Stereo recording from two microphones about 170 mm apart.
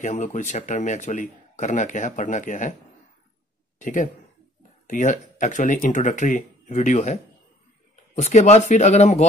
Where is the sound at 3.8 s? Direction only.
50° left (ahead or behind).